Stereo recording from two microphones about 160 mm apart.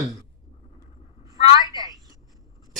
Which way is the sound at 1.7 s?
25° right (ahead or behind).